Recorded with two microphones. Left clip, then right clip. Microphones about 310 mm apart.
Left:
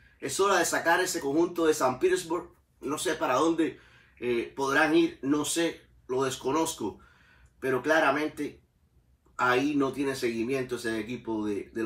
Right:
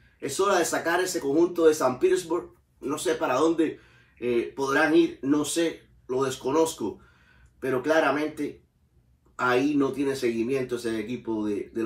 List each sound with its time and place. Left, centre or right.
0.2 s speech: centre